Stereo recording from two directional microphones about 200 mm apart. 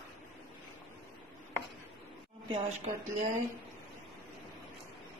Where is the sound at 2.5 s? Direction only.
35° right (ahead or behind).